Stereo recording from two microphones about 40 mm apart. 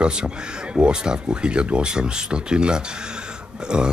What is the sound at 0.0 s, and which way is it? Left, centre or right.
Speech, right.